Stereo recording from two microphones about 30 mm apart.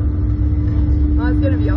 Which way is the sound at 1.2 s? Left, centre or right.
Left.